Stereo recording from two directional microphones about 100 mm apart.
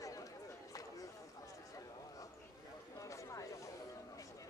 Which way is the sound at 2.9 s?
30° left (ahead or behind).